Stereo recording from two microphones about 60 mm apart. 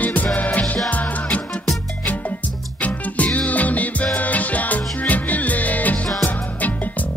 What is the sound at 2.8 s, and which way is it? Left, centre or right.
Music, left.